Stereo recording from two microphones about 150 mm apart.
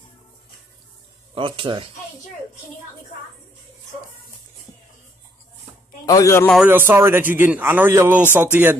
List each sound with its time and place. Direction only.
1.3 s speech: 35° right (ahead or behind)
6.0 s a man's voice: 20° left (ahead or behind)
6.7 s a man's voice: 15° right (ahead or behind)